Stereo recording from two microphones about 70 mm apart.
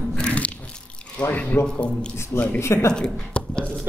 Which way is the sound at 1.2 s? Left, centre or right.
Left.